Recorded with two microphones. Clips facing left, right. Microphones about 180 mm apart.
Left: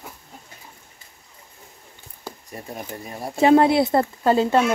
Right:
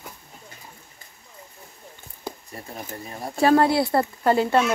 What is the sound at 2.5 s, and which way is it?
Speech, 15° left (ahead or behind).